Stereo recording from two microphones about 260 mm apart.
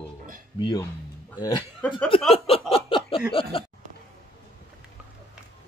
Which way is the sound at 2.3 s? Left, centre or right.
Left.